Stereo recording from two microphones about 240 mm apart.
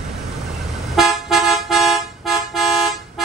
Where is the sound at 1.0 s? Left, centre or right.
Centre.